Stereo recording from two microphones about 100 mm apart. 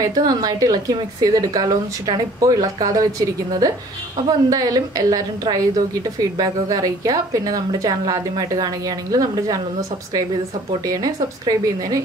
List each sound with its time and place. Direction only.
0.0 s a woman's voice: 40° right (ahead or behind)